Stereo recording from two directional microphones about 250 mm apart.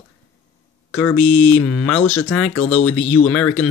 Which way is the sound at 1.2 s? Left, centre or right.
Left.